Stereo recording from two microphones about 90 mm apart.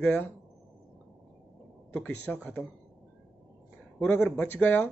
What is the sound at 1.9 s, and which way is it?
Speech, 20° left (ahead or behind).